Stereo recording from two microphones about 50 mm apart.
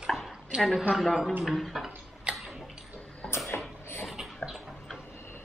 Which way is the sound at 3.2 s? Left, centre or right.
Centre.